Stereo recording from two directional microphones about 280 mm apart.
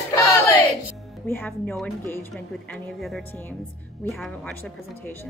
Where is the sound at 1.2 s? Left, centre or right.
Centre.